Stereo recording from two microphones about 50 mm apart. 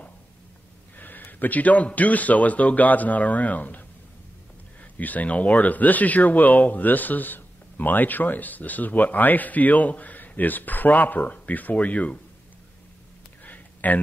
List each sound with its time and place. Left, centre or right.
0.9 s speech: left
4.9 s speech: left
13.4 s a sound: left